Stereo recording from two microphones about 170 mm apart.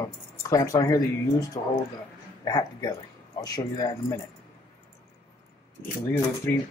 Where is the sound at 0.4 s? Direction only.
20° left (ahead or behind).